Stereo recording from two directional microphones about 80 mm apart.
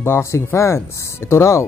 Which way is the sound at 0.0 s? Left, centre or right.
Left.